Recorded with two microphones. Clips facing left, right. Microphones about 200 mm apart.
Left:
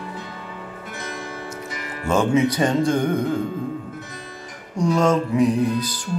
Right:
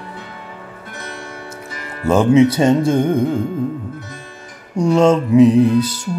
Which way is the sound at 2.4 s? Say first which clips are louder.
Right 5 dB; 25° right (ahead or behind).